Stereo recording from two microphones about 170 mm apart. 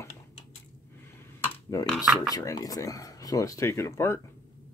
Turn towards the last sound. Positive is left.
turn(degrees=15)  # may be behind; listen again after turning